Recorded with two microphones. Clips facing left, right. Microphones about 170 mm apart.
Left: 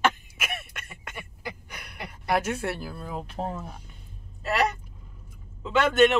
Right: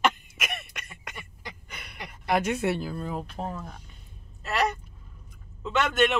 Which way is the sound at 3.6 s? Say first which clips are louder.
Left 1 dB; 10° left (ahead or behind).